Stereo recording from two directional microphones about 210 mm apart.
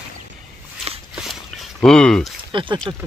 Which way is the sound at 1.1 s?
Centre (ahead or behind).